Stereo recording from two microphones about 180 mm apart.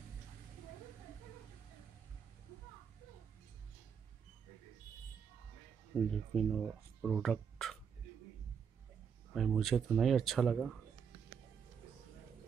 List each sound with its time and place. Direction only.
5.9 s speech: centre (ahead or behind)
9.3 s speech: centre (ahead or behind)